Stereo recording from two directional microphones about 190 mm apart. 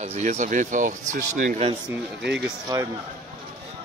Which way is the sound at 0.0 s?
35° right (ahead or behind).